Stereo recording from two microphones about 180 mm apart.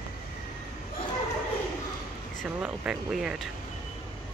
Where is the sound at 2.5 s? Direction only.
5° right (ahead or behind).